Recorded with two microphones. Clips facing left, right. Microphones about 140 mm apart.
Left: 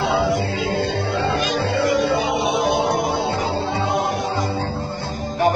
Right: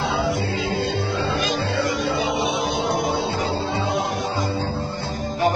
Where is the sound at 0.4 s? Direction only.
60° left (ahead or behind).